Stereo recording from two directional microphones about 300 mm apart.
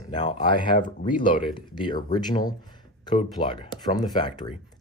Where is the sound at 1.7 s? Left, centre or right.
Centre.